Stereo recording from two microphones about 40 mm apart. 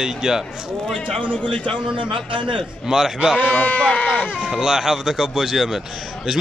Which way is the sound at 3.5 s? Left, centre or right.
Left.